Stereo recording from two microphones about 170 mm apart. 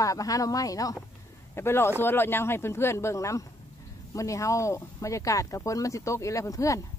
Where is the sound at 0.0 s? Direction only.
20° left (ahead or behind).